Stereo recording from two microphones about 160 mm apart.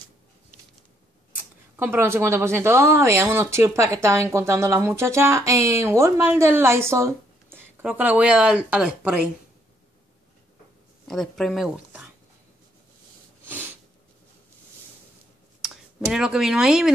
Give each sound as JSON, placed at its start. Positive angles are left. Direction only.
{"t": 1.8, "sound": "a woman's voice", "side_deg": -15}
{"t": 11.1, "sound": "speech", "side_deg": 0}
{"t": 15.6, "sound": "speech", "side_deg": -5}